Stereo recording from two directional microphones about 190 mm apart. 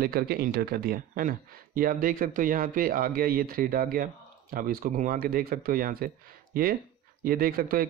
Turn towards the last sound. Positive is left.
turn(degrees=-50)  # may be behind; listen again after turning